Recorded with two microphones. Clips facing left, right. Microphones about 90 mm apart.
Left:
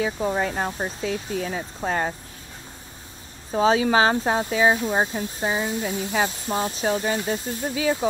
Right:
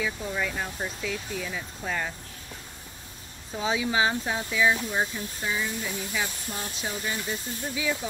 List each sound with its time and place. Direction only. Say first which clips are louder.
0.2 s speech: left 7 dB; 45° left (ahead or behind)
3.5 s speech: left 9 dB; 45° left (ahead or behind)
3.9 s speech: left 7 dB; 55° left (ahead or behind)
4.6 s speech: left 4 dB; 30° left (ahead or behind)
6.5 s speech: left 11 dB; 90° left
6.9 s speech: left 7 dB; 50° left (ahead or behind)